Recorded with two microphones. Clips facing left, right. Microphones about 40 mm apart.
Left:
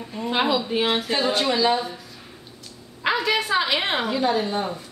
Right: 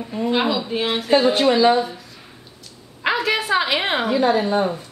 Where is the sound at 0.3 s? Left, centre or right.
Centre.